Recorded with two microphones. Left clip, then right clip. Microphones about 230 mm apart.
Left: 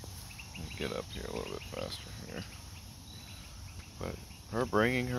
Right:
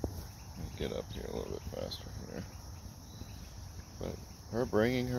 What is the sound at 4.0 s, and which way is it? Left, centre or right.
Speech, centre.